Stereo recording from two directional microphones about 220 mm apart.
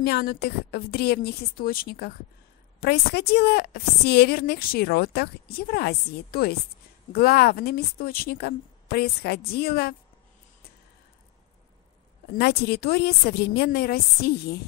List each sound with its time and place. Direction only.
0.0 s a woman's voice: 45° left (ahead or behind)
12.4 s a woman's voice: 45° left (ahead or behind)